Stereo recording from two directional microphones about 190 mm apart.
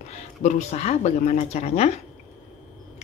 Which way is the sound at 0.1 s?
35° left (ahead or behind).